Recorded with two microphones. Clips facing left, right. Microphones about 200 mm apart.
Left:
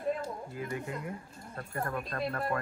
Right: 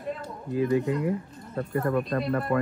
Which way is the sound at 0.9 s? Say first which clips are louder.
Right 12 dB; 90° right.